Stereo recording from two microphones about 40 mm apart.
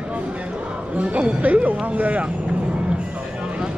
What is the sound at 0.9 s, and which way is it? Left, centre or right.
Speech, right.